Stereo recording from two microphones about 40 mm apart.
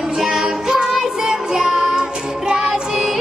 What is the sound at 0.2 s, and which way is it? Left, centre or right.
Music, centre.